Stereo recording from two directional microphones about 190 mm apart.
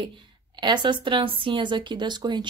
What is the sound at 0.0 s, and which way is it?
A woman's voice, 25° right (ahead or behind).